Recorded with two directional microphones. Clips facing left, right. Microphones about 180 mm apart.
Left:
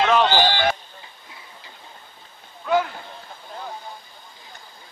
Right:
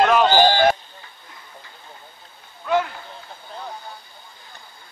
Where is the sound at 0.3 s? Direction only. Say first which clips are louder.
Right 5 dB; 45° right (ahead or behind).